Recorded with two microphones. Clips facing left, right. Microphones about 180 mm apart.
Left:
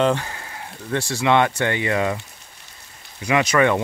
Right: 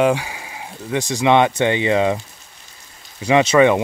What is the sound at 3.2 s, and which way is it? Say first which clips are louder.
Speech: right 5 dB; 25° right (ahead or behind).